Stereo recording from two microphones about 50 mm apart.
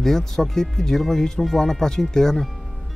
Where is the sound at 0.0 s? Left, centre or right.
Centre.